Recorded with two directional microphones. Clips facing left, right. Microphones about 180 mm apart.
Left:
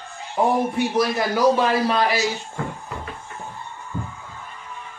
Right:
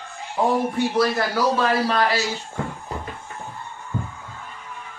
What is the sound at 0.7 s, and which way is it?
A man's voice, 15° left (ahead or behind).